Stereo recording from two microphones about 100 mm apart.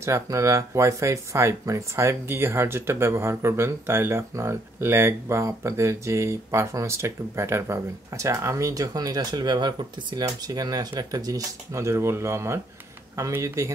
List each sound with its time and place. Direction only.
0.0 s speech: 30° right (ahead or behind)